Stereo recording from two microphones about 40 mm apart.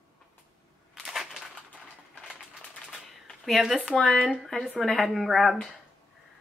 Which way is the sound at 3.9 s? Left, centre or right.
Centre.